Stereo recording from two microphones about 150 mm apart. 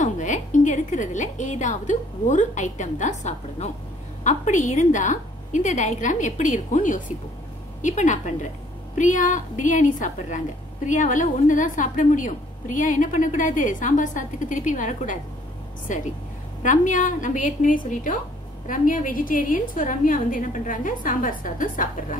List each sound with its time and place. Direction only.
0.0 s a woman's voice: 55° left (ahead or behind)